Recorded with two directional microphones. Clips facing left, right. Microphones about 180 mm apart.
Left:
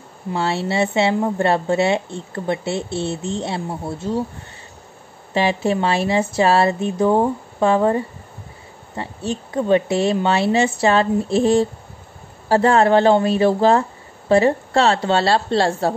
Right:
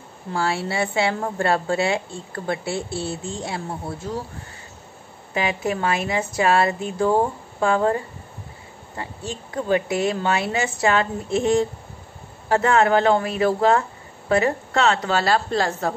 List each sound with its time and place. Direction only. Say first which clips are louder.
0.3 s a woman's voice: left 3 dB; 25° left (ahead or behind)
5.3 s a woman's voice: left 5 dB; 30° left (ahead or behind)